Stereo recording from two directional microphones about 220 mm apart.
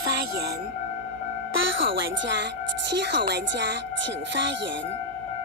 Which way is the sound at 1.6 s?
60° right (ahead or behind).